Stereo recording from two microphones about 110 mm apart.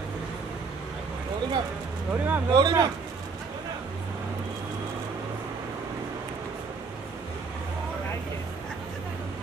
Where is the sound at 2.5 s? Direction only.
35° right (ahead or behind).